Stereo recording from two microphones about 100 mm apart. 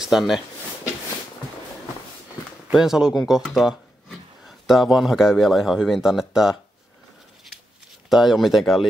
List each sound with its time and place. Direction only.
0.0 s speech: centre (ahead or behind)
2.7 s a man's voice: 5° right (ahead or behind)
4.5 s a man's voice: centre (ahead or behind)
8.1 s a man's voice: centre (ahead or behind)